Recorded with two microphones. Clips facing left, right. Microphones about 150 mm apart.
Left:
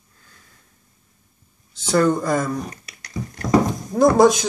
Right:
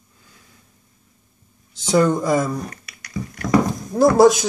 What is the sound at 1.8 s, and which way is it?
Speech, 10° right (ahead or behind).